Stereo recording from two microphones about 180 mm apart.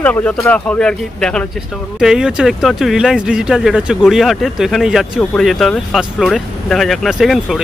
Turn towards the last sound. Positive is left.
turn(degrees=0)  # may be behind; listen again after turning